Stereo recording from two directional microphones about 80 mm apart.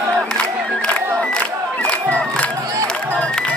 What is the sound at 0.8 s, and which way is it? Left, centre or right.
Music, centre.